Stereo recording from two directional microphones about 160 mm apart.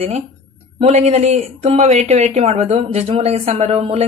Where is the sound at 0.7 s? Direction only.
40° right (ahead or behind).